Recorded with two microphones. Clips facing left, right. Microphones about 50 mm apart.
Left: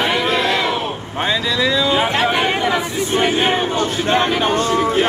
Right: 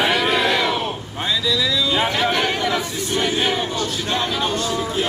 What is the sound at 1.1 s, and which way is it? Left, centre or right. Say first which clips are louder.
Vehicle: left 3 dB; left.